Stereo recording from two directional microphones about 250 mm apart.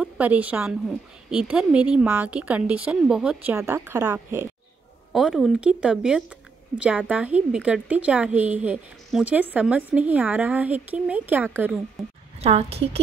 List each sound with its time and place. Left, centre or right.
0.0 s a woman's voice: centre
5.1 s a woman's voice: centre
12.4 s a woman's voice: right